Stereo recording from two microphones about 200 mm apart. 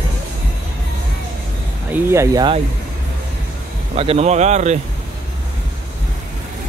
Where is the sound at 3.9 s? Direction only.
30° right (ahead or behind).